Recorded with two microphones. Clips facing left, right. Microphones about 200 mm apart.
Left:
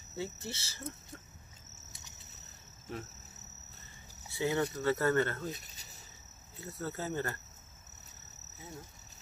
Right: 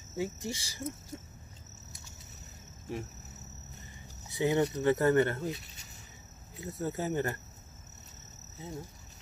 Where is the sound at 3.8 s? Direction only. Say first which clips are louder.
Right 4 dB; 20° right (ahead or behind).